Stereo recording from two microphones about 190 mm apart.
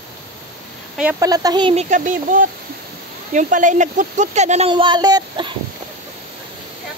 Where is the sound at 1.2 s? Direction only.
20° right (ahead or behind).